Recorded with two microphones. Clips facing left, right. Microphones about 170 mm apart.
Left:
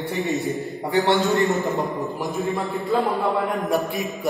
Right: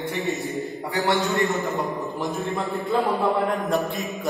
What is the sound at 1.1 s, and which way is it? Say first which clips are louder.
A man's voice: left 2 dB; centre (ahead or behind).